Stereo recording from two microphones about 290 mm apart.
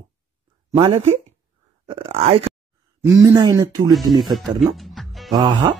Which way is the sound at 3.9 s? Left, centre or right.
Centre.